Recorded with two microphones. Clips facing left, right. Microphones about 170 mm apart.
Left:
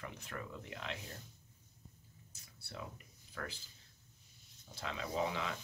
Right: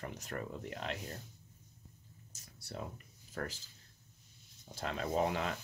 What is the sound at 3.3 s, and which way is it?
Speech, 40° right (ahead or behind).